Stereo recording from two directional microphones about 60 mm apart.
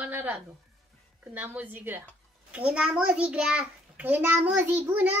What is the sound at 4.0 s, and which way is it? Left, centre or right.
A child's voice, right.